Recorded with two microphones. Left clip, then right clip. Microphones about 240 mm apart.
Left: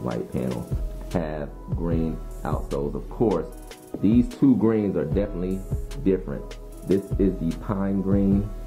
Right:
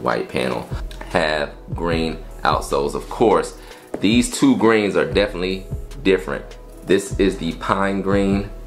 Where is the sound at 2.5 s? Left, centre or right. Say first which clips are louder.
Right 5 dB; right.